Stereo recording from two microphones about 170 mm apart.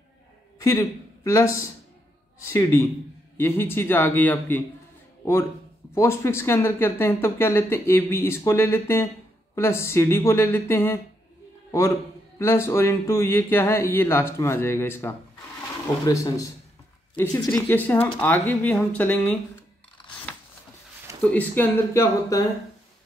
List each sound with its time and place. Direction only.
0.6 s a man's voice: 20° left (ahead or behind)
5.9 s speech: 15° left (ahead or behind)
12.4 s speech: 15° left (ahead or behind)
20.1 s scissors: 10° left (ahead or behind)
21.2 s speech: 5° left (ahead or behind)